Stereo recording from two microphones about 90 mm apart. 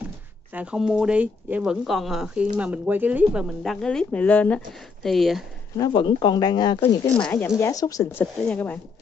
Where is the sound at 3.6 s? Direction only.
5° left (ahead or behind).